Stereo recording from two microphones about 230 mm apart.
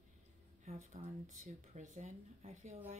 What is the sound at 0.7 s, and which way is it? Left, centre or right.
Speech, right.